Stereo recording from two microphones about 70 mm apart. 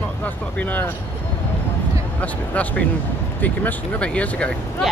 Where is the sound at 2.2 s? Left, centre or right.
Left.